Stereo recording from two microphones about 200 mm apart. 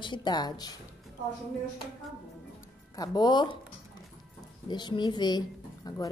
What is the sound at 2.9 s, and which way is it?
Speech, 20° left (ahead or behind).